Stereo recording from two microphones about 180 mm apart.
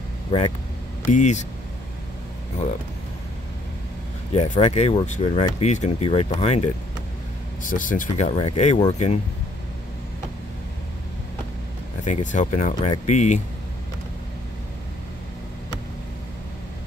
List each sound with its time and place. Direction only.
1.0 s speech: 40° left (ahead or behind)
4.3 s speech: 35° left (ahead or behind)
7.7 s speech: 45° left (ahead or behind)
12.0 s speech: 40° left (ahead or behind)